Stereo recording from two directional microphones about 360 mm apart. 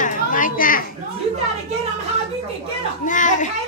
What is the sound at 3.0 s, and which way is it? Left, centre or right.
Speech, left.